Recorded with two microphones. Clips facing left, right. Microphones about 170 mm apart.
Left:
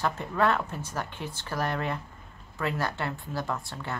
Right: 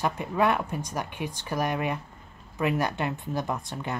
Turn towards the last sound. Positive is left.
turn(degrees=-20)  # may be behind; listen again after turning